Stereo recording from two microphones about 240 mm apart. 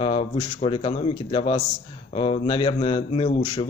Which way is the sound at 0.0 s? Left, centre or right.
Left.